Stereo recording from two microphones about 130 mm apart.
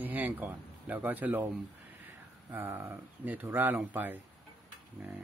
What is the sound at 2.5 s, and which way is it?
Speech, 15° right (ahead or behind).